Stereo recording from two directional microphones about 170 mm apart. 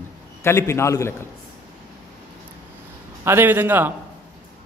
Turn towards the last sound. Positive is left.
turn(degrees=-10)  # may be behind; listen again after turning